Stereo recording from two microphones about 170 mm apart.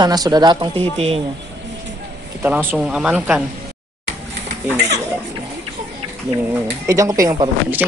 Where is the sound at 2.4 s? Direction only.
5° right (ahead or behind).